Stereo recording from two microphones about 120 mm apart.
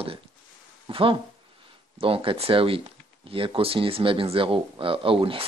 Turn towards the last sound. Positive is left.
turn(degrees=-50)  # may be behind; listen again after turning